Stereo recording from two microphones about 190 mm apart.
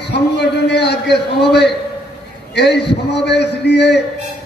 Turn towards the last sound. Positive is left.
turn(degrees=60)  # may be behind; listen again after turning